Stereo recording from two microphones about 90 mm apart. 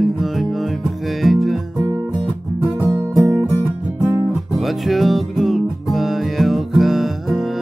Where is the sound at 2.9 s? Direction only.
35° right (ahead or behind).